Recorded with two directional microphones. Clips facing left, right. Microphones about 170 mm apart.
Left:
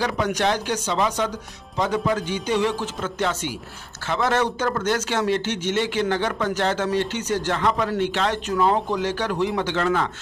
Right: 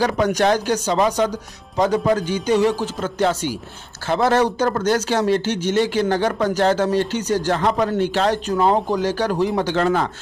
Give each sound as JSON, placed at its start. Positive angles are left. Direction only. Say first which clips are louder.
{"t": 0.0, "sound": "a man's voice", "louder": "right 5 dB", "side_deg": -40}